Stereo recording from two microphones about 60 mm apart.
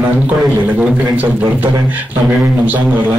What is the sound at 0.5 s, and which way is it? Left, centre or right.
Speech, right.